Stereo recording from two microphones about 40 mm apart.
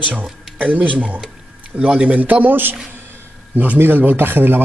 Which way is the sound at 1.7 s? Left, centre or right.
Right.